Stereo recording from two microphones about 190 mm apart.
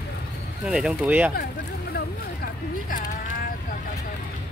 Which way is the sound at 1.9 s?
50° left (ahead or behind).